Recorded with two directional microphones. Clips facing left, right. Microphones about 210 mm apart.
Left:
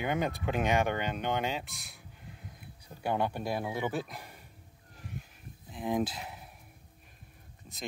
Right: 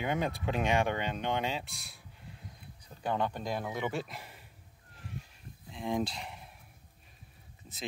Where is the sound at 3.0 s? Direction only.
10° left (ahead or behind).